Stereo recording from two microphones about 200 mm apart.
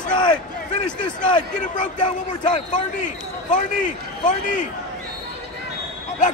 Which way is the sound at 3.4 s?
40° left (ahead or behind).